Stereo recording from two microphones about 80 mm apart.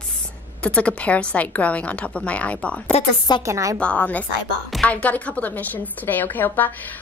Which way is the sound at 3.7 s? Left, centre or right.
Centre.